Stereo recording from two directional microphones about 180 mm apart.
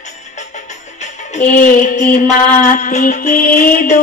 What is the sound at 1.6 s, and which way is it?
Music, 45° left (ahead or behind).